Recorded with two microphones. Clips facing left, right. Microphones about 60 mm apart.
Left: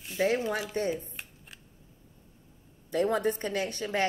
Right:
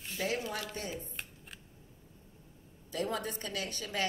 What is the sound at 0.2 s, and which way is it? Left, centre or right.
Speech, left.